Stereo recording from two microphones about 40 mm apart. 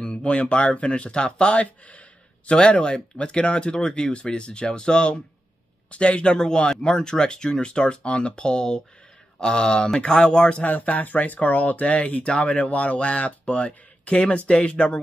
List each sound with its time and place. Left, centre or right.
0.0 s speech: left
10.6 s speech: left